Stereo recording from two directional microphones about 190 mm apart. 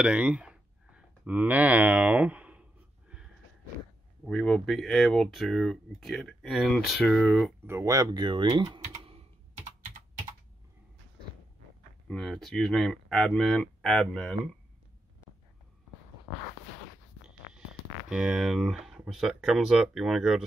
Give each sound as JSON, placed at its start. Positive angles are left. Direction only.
{"t": 0.0, "sound": "speech", "side_deg": -5}
{"t": 4.3, "sound": "speech", "side_deg": 5}
{"t": 7.6, "sound": "speech", "side_deg": -15}
{"t": 12.1, "sound": "speech", "side_deg": 0}
{"t": 18.1, "sound": "speech", "side_deg": -5}